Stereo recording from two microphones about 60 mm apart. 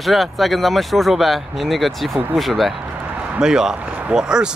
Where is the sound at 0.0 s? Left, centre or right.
Centre.